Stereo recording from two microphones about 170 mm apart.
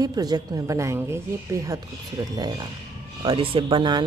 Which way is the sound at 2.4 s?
25° right (ahead or behind).